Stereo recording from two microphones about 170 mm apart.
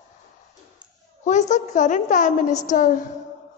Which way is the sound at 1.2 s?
45° left (ahead or behind).